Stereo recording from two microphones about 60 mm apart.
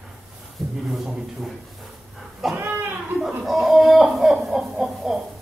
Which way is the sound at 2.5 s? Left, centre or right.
Right.